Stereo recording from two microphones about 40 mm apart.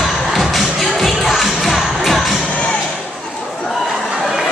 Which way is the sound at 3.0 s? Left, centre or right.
Centre.